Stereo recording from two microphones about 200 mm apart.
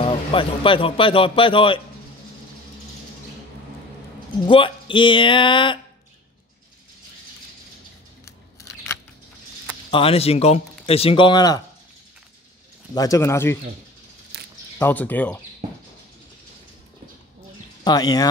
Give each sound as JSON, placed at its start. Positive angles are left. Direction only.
{"t": 0.0, "sound": "speech", "side_deg": 25}
{"t": 4.5, "sound": "speech", "side_deg": 25}
{"t": 8.3, "sound": "scissors", "side_deg": 15}
{"t": 9.8, "sound": "speech", "side_deg": 25}
{"t": 12.9, "sound": "speech", "side_deg": 15}
{"t": 14.3, "sound": "a sound", "side_deg": -55}
{"t": 14.8, "sound": "speech", "side_deg": 10}
{"t": 17.8, "sound": "speech", "side_deg": 20}